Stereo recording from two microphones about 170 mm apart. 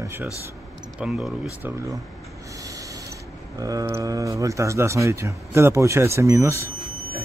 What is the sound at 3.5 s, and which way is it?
Speech, 20° right (ahead or behind).